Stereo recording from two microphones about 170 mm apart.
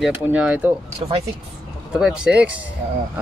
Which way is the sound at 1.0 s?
35° right (ahead or behind).